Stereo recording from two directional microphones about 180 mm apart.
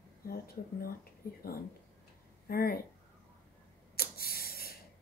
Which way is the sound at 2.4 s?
55° left (ahead or behind).